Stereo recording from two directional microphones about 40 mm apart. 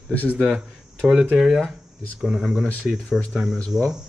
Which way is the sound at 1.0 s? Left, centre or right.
Centre.